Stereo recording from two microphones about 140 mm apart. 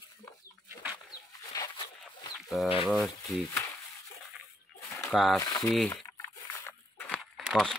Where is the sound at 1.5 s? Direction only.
25° left (ahead or behind).